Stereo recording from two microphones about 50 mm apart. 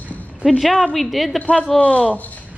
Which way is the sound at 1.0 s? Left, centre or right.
Centre.